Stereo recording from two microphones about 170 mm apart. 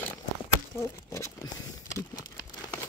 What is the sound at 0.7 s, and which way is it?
Speech, 15° left (ahead or behind).